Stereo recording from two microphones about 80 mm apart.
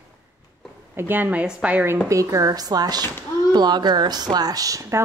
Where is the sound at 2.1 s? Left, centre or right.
Right.